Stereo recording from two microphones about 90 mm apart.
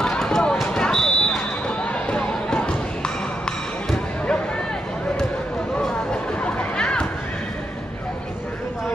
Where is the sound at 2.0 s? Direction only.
10° left (ahead or behind).